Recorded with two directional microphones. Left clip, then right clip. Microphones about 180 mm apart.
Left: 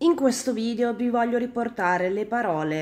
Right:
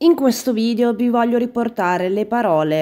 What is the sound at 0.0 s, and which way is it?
Speech, 35° right (ahead or behind).